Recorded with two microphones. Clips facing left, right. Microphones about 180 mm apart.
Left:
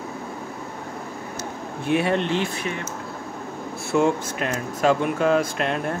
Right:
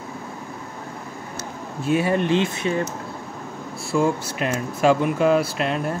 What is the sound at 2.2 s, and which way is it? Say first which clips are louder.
Speech: right 4 dB; 20° right (ahead or behind).